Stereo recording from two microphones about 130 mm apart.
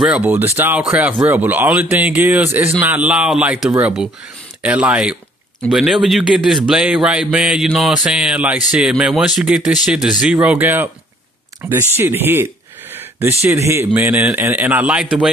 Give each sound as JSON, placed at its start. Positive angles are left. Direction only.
{"t": 0.0, "sound": "a man's voice", "side_deg": -10}